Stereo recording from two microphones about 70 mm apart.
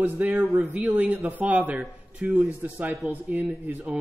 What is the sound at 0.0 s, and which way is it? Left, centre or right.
A man's voice, right.